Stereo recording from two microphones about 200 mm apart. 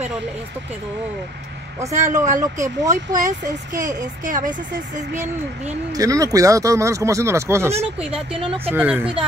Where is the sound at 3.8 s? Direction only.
40° right (ahead or behind).